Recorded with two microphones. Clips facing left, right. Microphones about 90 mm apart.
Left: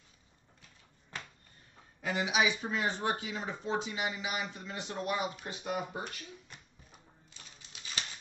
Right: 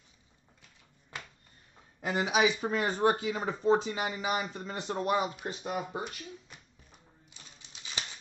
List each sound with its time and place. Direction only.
2.0 s speech: 35° right (ahead or behind)
7.3 s typewriter: 15° right (ahead or behind)